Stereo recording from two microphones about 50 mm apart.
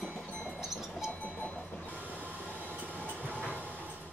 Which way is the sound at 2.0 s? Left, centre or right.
Right.